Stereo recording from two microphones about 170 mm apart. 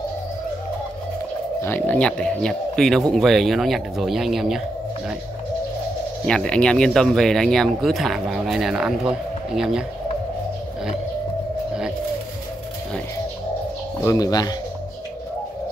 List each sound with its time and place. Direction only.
1.6 s speech: 10° left (ahead or behind)
6.2 s speech: 5° left (ahead or behind)
14.0 s speech: 20° left (ahead or behind)